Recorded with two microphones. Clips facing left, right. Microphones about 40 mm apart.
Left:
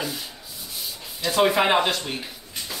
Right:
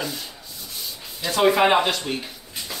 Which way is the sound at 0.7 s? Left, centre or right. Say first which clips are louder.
Even; centre.